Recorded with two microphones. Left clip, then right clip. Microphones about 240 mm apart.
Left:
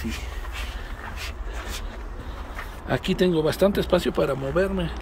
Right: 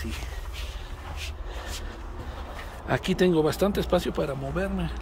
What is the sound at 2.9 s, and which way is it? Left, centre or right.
A man's voice, centre.